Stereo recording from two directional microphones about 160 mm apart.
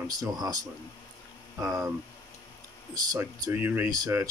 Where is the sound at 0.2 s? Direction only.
25° right (ahead or behind).